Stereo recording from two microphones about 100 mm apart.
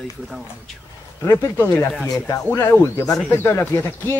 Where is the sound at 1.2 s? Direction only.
30° left (ahead or behind).